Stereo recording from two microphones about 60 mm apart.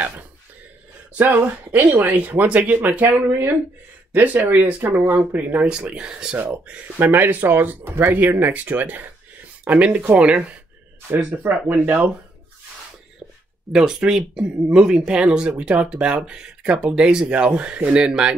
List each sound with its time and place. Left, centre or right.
1.1 s speech: right
3.2 s speech: right
4.1 s speech: right
5.3 s speech: right
5.7 s speech: centre
7.0 s speech: right
13.7 s speech: centre